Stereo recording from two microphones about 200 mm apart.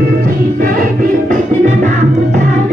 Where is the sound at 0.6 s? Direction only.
40° right (ahead or behind).